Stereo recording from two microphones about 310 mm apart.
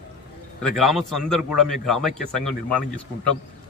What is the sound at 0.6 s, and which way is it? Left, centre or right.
A man's voice, centre.